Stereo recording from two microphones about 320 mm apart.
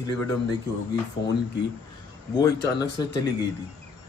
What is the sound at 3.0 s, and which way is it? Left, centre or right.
Speech, centre.